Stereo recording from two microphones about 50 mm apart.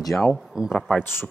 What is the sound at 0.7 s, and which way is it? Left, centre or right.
Speech, centre.